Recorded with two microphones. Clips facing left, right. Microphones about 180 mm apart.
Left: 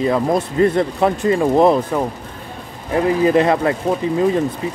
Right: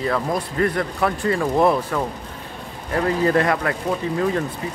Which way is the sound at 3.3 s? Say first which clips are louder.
Left 5 dB; 20° left (ahead or behind).